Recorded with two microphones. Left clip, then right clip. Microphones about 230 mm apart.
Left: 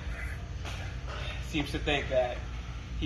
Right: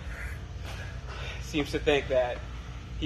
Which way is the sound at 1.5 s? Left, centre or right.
Centre.